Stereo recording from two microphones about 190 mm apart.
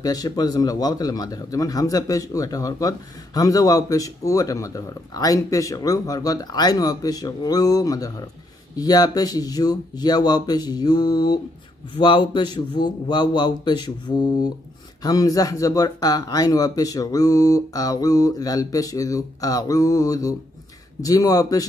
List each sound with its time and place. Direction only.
0.0 s speech: 20° left (ahead or behind)